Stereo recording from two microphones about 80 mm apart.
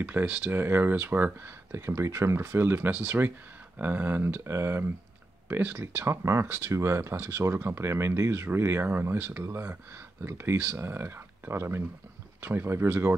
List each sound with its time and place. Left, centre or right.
0.0 s speech: right